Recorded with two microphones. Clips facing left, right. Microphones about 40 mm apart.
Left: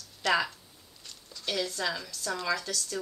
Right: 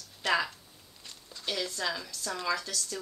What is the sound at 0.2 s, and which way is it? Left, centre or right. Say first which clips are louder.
Speech: left 2 dB; right.